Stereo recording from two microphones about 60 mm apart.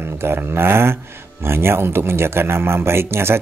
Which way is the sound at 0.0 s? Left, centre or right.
Right.